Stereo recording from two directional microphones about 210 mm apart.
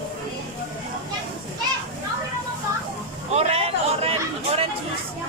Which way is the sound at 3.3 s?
30° right (ahead or behind).